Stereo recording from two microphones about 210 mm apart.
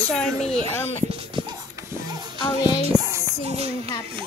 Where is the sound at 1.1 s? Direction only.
25° right (ahead or behind).